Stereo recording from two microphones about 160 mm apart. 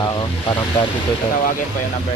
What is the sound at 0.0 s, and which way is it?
Speech, 30° left (ahead or behind).